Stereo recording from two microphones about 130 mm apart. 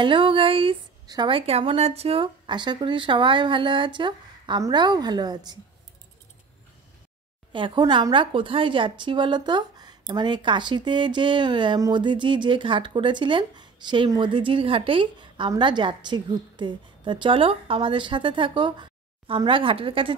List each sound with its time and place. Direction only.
0.0 s a sound: 40° right (ahead or behind)
1.0 s a woman's voice: 30° right (ahead or behind)
1.3 s a woman's voice: 45° right (ahead or behind); by 5.6 s 30° right (ahead or behind)
7.5 s a woman's voice: 35° right (ahead or behind)